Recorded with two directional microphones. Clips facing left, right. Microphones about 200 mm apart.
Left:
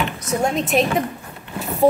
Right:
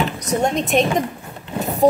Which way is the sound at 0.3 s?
5° left (ahead or behind).